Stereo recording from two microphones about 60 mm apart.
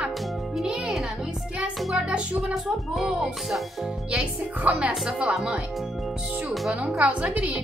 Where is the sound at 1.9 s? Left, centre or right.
Centre.